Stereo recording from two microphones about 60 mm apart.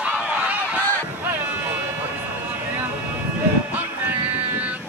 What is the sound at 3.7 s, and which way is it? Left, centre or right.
Music, right.